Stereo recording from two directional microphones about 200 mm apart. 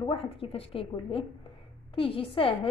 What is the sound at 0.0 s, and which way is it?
A woman's voice, 30° left (ahead or behind).